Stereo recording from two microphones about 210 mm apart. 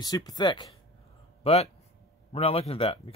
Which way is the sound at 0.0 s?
20° left (ahead or behind).